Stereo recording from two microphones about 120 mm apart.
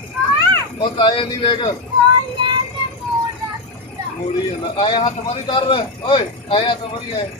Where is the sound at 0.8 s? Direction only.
40° left (ahead or behind).